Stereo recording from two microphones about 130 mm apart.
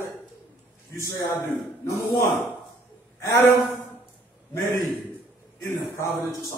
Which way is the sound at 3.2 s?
30° left (ahead or behind).